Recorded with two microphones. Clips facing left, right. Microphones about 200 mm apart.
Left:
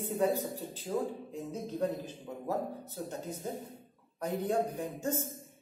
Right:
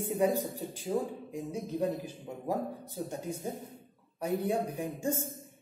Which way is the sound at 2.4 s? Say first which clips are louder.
Right 1 dB; 15° right (ahead or behind).